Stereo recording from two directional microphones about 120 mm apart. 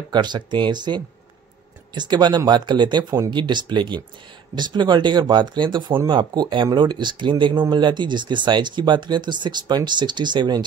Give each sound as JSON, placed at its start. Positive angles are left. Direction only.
{"t": 0.1, "sound": "speech", "side_deg": -40}